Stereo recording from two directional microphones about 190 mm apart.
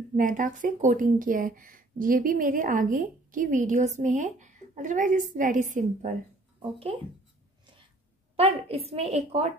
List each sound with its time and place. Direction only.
0.1 s speech: 45° right (ahead or behind)
6.6 s speech: 25° right (ahead or behind)
8.4 s a woman's voice: 30° right (ahead or behind)